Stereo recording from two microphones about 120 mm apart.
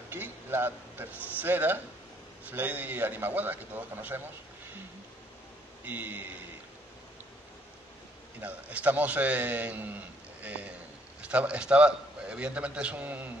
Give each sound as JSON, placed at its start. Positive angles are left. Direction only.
{"t": 0.1, "sound": "a sound", "side_deg": -15}
{"t": 1.3, "sound": "a man's voice", "side_deg": -15}
{"t": 5.9, "sound": "a man's voice", "side_deg": -15}
{"t": 8.4, "sound": "a man's voice", "side_deg": -15}